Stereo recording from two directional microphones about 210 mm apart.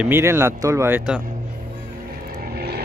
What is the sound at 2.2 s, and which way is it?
Vehicle, 45° right (ahead or behind).